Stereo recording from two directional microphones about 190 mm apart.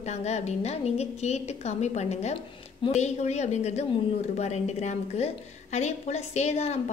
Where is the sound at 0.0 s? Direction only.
35° left (ahead or behind).